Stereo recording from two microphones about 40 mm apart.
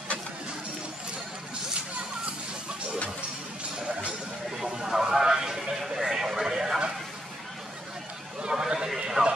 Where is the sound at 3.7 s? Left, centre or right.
Centre.